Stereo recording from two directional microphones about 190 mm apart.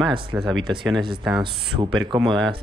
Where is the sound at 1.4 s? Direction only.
25° right (ahead or behind).